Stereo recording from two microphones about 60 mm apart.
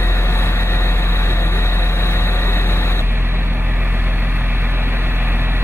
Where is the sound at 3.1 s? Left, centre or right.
Right.